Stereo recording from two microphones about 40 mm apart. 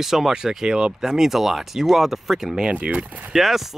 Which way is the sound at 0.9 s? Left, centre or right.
Centre.